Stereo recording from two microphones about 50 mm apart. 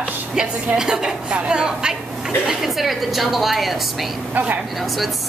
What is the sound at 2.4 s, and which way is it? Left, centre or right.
A woman's voice, centre.